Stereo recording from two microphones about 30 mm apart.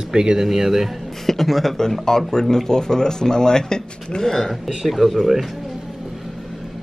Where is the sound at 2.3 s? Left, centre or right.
Centre.